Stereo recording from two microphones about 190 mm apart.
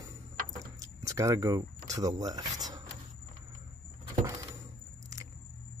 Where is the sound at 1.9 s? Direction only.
20° right (ahead or behind).